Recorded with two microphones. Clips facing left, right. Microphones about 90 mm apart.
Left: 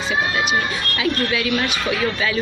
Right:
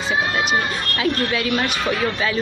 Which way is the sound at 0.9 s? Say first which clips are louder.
Even; 40° right (ahead or behind).